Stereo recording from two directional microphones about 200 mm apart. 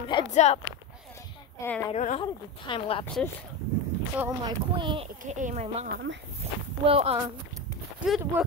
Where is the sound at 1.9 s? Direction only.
30° left (ahead or behind).